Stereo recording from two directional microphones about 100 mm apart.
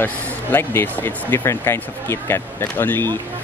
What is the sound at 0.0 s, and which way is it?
Speech, 20° left (ahead or behind).